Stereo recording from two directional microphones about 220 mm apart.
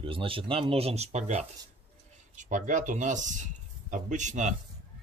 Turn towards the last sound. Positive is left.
turn(degrees=-35)  # may be behind; listen again after turning